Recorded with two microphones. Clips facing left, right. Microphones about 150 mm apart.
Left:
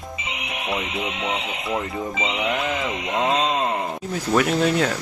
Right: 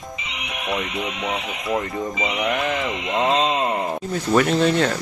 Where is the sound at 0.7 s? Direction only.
Centre (ahead or behind).